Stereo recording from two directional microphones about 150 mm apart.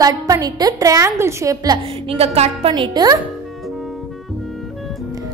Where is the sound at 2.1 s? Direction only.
45° right (ahead or behind).